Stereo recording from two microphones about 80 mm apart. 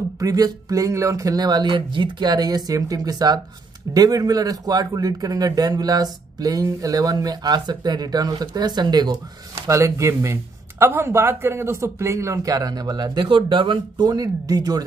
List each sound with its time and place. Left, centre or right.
0.2 s speech: right
9.7 s speech: right
13.5 s speech: right